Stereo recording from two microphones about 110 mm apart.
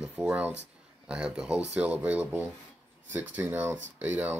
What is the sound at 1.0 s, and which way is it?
Speech, 10° right (ahead or behind).